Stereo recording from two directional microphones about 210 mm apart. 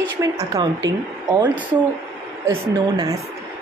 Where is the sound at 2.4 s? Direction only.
15° right (ahead or behind).